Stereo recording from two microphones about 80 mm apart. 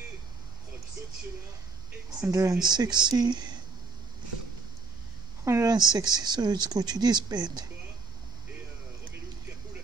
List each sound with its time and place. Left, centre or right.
2.2 s speech: right
2.7 s speech: right
5.4 s a woman's voice: right
5.7 s speech: right